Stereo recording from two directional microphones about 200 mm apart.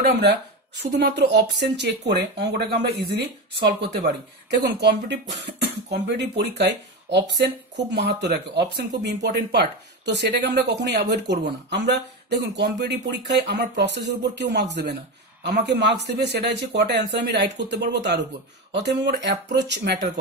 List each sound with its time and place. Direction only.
0.0 s speech: 55° right (ahead or behind)